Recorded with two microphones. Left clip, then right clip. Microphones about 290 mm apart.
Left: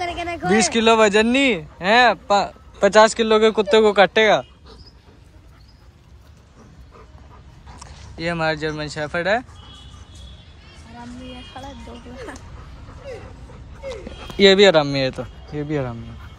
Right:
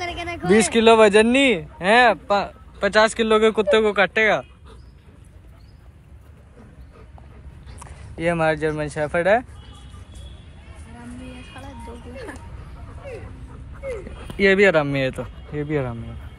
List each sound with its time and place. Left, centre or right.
0.0 s a sound: left
0.6 s speech: centre
7.8 s speech: centre
13.8 s speech: centre